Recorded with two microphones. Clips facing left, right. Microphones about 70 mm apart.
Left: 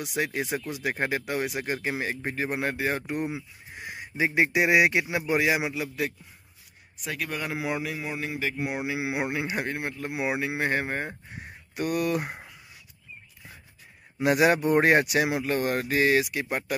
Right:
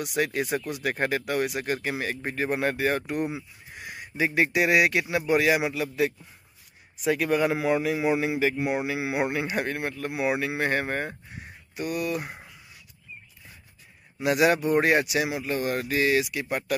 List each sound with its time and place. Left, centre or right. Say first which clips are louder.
0.2 s speech: right 2 dB; centre
2.2 s speech: right 5 dB; centre
3.3 s speech: even; centre
7.1 s speech: right 9 dB; centre
7.5 s speech: right 5 dB; centre
7.9 s speech: right 8 dB; centre
8.6 s speech: right 2 dB; centre
10.1 s speech: right 2 dB; centre
11.7 s speech: left 2 dB; left
14.2 s speech: even; left